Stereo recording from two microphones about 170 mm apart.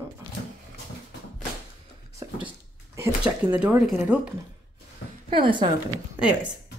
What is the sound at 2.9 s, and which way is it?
Speech, 10° right (ahead or behind).